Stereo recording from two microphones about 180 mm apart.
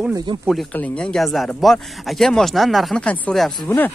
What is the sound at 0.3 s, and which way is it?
Speech, 25° right (ahead or behind).